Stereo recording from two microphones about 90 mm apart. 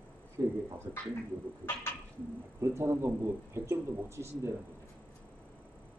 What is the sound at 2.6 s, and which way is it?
Speech, 30° right (ahead or behind).